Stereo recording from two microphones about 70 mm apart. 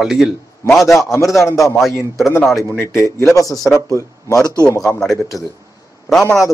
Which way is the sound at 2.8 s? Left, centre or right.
Left.